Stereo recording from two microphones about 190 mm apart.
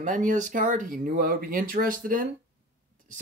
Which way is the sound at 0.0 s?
40° right (ahead or behind).